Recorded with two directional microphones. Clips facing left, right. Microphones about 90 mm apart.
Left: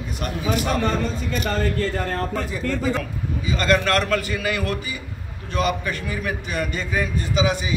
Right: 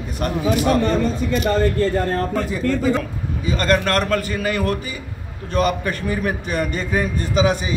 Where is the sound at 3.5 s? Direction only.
45° right (ahead or behind).